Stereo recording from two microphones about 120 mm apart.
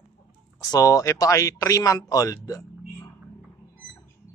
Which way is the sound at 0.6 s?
30° left (ahead or behind).